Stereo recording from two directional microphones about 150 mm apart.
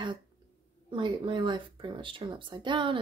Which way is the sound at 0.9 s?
35° right (ahead or behind).